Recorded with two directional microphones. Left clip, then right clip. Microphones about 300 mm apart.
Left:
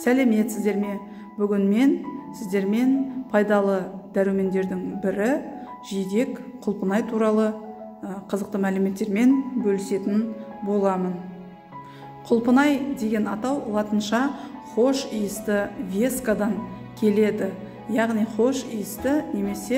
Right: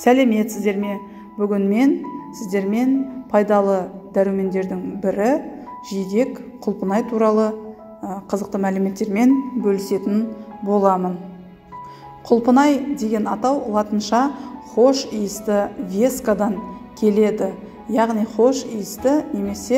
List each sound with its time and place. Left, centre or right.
0.0 s a woman's voice: centre
12.3 s a woman's voice: centre